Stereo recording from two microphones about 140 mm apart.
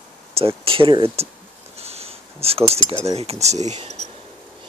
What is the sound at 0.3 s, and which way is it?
Speech, 45° right (ahead or behind).